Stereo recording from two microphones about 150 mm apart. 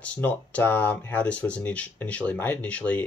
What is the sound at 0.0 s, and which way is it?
Speech, 10° left (ahead or behind).